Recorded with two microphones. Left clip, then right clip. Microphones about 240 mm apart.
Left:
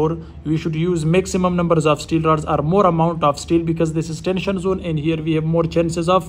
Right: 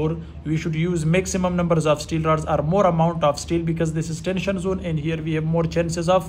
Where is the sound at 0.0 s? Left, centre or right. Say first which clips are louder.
Left 6 dB; left.